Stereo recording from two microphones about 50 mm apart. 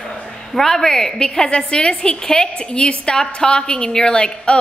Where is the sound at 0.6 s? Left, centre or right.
Centre.